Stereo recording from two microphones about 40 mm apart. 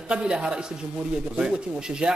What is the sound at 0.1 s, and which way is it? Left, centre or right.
Speech, right.